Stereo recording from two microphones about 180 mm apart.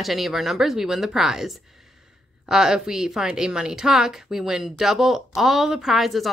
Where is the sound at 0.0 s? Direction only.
Centre (ahead or behind).